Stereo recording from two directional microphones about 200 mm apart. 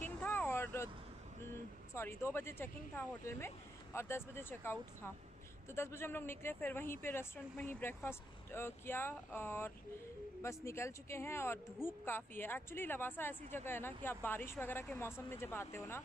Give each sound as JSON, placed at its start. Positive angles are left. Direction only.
{"t": 0.0, "sound": "vehicle", "side_deg": 10}
{"t": 2.0, "sound": "speech", "side_deg": 10}